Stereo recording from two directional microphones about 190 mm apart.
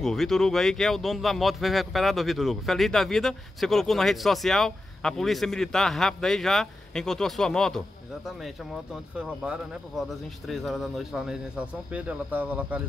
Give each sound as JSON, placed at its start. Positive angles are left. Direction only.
{"t": 0.0, "sound": "speech", "side_deg": 0}
{"t": 9.2, "sound": "speech", "side_deg": -5}